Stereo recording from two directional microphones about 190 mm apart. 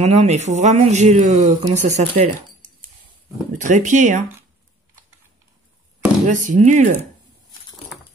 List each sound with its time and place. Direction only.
0.0 s speech: 35° right (ahead or behind)
3.5 s speech: 40° right (ahead or behind)
6.2 s speech: 40° right (ahead or behind)